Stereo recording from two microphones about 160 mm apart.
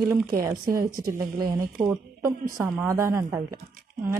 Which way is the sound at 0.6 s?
65° right (ahead or behind).